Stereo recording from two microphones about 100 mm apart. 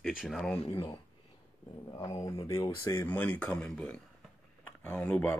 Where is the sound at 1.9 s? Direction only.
40° left (ahead or behind); by 4.0 s 10° left (ahead or behind).